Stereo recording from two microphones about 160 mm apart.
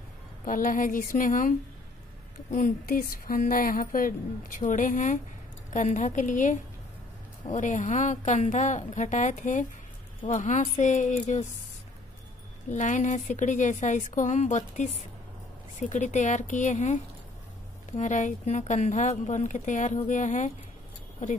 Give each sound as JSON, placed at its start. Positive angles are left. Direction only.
{"t": 0.5, "sound": "speech", "side_deg": 60}
{"t": 2.5, "sound": "speech", "side_deg": 60}
{"t": 12.7, "sound": "speech", "side_deg": 50}